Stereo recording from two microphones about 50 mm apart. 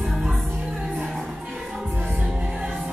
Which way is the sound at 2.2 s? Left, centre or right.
Centre.